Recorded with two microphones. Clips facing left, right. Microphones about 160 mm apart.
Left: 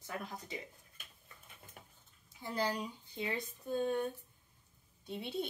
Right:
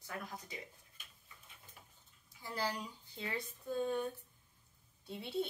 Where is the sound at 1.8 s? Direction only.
55° left (ahead or behind).